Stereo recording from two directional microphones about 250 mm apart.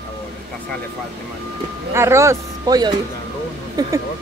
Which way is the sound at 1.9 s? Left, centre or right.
Centre.